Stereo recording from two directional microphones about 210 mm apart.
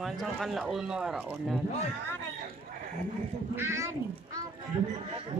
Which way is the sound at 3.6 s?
15° right (ahead or behind).